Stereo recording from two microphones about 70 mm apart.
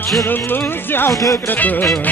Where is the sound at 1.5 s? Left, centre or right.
Left.